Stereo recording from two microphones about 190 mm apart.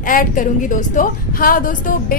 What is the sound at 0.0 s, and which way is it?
A woman's voice, 45° left (ahead or behind).